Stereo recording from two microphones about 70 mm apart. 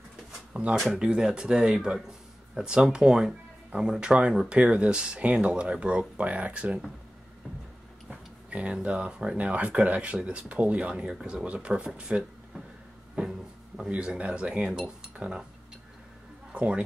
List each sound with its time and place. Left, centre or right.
0.5 s a sound: centre
0.9 s speech: centre
8.1 s speech: centre
16.5 s speech: centre